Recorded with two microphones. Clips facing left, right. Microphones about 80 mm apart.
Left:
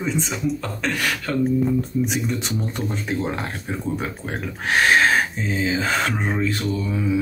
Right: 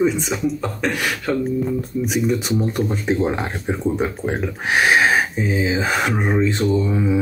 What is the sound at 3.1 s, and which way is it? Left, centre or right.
Speech, centre.